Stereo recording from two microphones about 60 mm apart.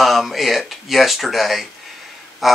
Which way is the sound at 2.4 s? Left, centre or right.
Centre.